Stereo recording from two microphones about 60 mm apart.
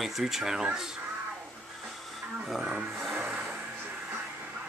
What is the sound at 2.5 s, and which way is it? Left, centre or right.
Vehicle, centre.